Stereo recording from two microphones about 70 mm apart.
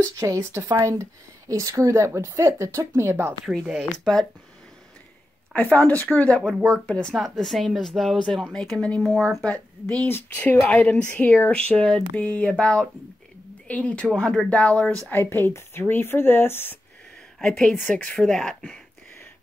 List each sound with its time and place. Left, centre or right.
0.1 s speech: right
0.4 s speech: right
4.0 s speech: centre
5.5 s a woman's voice: centre
9.0 s speech: centre
9.4 s a woman's voice: centre
15.0 s speech: left
17.4 s a woman's voice: centre